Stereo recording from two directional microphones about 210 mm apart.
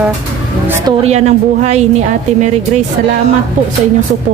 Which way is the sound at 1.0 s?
30° right (ahead or behind).